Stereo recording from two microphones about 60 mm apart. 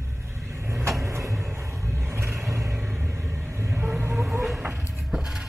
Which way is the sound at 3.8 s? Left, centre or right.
Right.